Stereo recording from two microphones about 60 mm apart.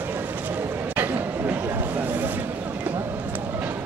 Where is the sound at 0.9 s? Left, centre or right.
Right.